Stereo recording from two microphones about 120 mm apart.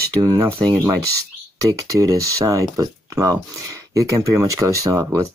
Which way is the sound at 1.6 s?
30° right (ahead or behind).